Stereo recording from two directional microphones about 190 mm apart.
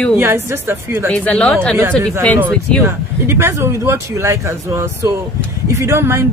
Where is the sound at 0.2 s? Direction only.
10° right (ahead or behind).